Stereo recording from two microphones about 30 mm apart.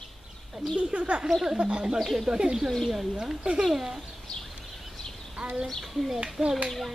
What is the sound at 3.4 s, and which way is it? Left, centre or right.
Speech, right.